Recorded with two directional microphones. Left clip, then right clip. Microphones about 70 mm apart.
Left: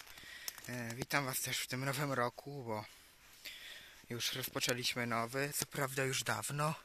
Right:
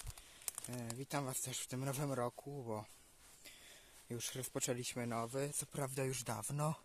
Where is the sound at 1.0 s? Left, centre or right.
Right.